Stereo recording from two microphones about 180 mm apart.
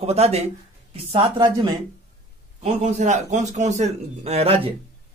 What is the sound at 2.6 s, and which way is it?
A man's voice, 40° right (ahead or behind).